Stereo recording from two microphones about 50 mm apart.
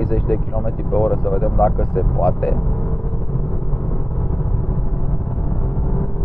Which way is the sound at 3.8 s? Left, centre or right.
Centre.